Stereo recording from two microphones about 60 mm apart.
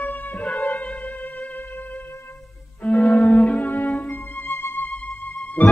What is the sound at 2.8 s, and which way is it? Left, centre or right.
Music, left.